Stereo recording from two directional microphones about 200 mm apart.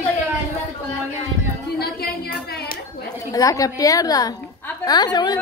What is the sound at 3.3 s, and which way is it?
A woman's voice, 15° left (ahead or behind).